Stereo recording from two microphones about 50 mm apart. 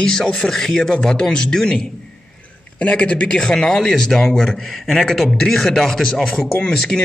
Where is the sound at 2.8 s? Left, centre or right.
Left.